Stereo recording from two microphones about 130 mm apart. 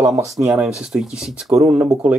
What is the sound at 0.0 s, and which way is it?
Speech, 25° right (ahead or behind).